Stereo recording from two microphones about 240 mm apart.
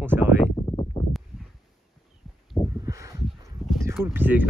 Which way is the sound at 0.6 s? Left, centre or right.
Centre.